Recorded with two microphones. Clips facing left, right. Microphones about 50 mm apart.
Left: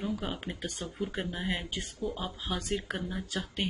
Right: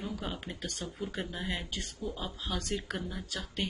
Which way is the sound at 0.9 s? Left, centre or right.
Centre.